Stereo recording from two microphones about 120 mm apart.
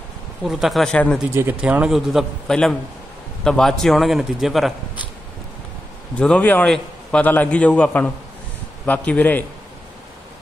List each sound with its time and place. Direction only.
0.4 s a man's voice: centre (ahead or behind)
1.3 s speech: 20° right (ahead or behind)
1.6 s a man's voice: 10° right (ahead or behind)
6.1 s a man's voice: 10° left (ahead or behind)